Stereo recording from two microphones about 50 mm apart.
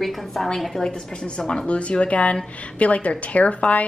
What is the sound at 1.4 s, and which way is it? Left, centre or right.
Speech, centre.